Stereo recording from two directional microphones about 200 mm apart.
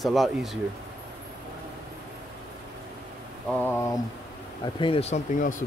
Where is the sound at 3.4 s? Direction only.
10° left (ahead or behind).